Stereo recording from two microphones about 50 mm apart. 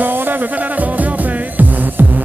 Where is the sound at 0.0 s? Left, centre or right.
Right.